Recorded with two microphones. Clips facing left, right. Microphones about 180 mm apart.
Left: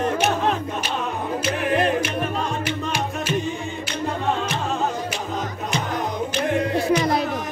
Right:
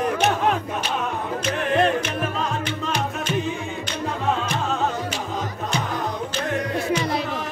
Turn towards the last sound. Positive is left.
turn(degrees=40)  # may be behind; listen again after turning